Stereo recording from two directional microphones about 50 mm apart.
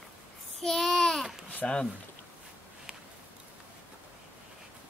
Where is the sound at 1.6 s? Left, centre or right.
Centre.